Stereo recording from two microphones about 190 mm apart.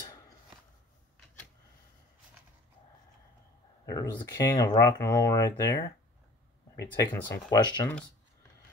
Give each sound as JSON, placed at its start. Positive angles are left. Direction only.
{"t": 3.9, "sound": "speech", "side_deg": 20}